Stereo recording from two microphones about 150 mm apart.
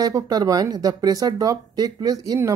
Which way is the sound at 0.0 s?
25° right (ahead or behind).